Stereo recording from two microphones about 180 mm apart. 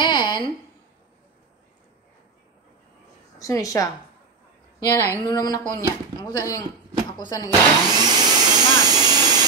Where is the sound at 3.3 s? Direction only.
20° left (ahead or behind).